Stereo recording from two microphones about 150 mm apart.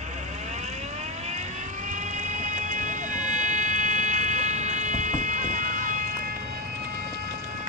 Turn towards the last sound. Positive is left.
turn(degrees=-60)  # may be behind; listen again after turning